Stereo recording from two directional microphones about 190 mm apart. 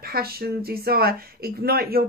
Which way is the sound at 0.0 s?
55° right (ahead or behind).